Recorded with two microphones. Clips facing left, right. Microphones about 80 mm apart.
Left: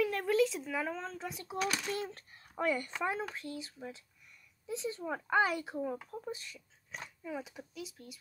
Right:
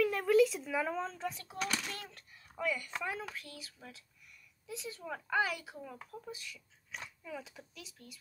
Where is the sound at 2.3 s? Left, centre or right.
Left.